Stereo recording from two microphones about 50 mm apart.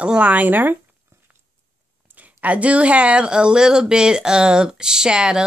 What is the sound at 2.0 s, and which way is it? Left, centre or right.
Speech, right.